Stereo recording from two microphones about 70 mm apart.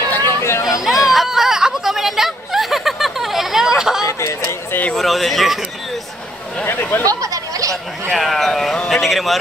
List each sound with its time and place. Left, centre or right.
0.0 s chatter: left
0.7 s chatter: centre
1.0 s a sound: centre
4.0 s chatter: left
4.9 s speech: centre
6.6 s speech: left
7.1 s chatter: right
8.1 s speech: centre